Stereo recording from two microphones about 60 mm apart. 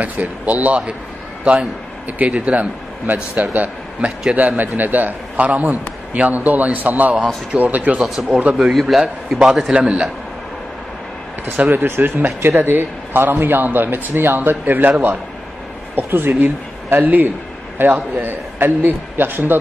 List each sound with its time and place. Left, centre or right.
0.0 s a man's voice: right
8.7 s a man's voice: centre
9.8 s a man's voice: centre
11.4 s a man's voice: right